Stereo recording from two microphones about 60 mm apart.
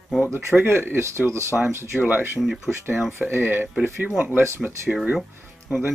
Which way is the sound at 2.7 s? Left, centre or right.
Right.